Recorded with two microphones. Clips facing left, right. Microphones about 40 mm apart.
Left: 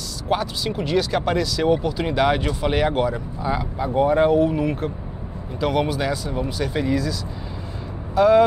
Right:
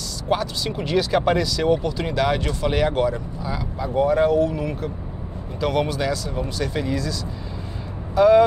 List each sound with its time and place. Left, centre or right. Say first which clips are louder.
0.3 s speech: even; centre
3.4 s speech: left 5 dB; left
5.6 s speech: left 1 dB; centre